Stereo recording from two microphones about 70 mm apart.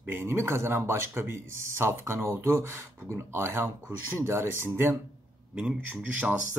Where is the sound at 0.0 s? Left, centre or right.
Right.